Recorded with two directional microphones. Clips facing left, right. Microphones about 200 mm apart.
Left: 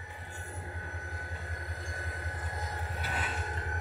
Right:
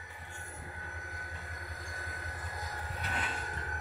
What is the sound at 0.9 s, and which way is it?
Train, 30° left (ahead or behind).